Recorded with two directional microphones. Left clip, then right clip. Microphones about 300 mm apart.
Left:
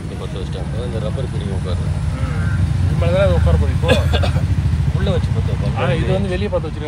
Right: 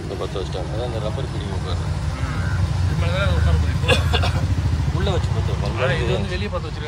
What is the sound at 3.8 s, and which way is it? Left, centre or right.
Vehicle, centre.